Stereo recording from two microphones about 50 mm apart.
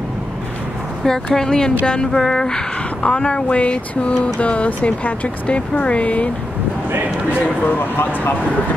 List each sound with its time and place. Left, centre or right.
1.0 s music: centre
3.0 s speech: left
7.6 s speech: left